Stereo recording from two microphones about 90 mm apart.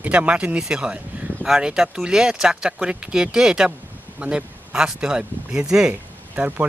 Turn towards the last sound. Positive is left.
turn(degrees=-15)  # may be behind; listen again after turning